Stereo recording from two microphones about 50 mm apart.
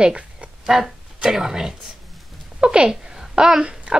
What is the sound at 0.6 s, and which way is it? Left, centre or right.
A woman's voice, centre.